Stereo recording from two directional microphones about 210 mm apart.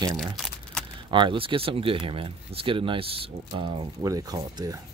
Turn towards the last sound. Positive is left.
turn(degrees=-15)  # may be behind; listen again after turning